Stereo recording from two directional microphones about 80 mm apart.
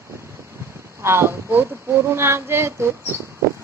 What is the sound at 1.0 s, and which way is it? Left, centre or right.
Speech, right.